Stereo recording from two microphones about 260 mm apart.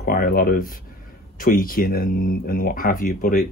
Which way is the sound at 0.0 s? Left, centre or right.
Left.